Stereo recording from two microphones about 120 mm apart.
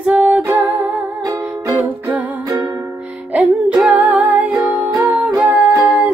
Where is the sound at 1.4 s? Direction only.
15° right (ahead or behind).